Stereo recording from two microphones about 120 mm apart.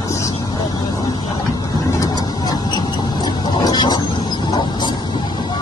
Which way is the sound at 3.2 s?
35° left (ahead or behind).